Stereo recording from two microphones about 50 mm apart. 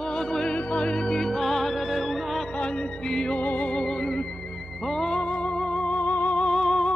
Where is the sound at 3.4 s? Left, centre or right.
Left.